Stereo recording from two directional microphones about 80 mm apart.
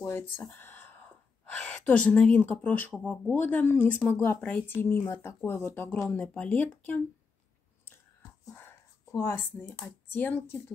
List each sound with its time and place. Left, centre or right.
0.0 s a sound: left
0.6 s gasp: left
3.3 s speech: left
4.8 s speech: left
6.1 s speech: centre
8.5 s speech: left